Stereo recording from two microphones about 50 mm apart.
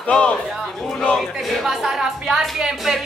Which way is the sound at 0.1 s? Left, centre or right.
Left.